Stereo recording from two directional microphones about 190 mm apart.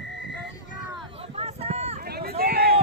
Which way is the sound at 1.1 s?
30° right (ahead or behind).